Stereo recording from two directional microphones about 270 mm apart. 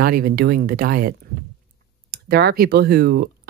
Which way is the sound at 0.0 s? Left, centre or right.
Right.